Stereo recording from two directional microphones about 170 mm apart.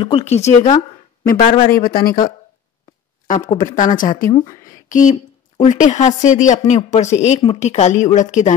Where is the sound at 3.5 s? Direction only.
50° left (ahead or behind).